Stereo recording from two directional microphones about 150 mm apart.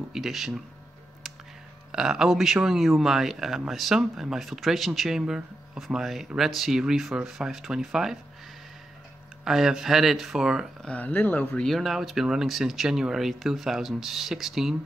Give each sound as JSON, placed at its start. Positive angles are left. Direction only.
{"t": 0.1, "sound": "speech", "side_deg": 0}
{"t": 1.9, "sound": "speech", "side_deg": -5}
{"t": 9.4, "sound": "speech", "side_deg": -5}
{"t": 10.9, "sound": "speech", "side_deg": 10}